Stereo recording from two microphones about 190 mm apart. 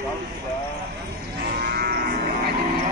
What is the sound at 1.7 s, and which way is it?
Livestock, 55° right (ahead or behind).